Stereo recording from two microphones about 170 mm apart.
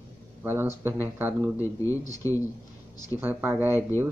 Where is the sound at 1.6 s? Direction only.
15° left (ahead or behind).